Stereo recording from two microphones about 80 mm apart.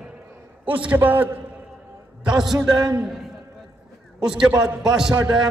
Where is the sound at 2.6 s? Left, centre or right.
Right.